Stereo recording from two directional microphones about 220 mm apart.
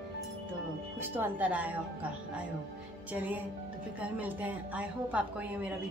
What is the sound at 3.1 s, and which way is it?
Speech, 5° right (ahead or behind).